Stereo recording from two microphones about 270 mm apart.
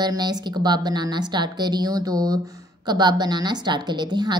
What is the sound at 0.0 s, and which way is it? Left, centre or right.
A woman's voice, centre.